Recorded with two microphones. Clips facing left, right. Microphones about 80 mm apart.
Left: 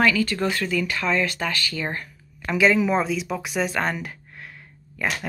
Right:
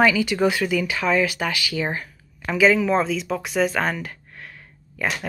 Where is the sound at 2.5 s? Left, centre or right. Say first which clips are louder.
Right 2 dB; centre.